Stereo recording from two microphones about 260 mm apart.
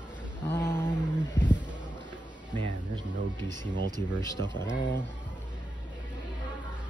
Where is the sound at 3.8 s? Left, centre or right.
Centre.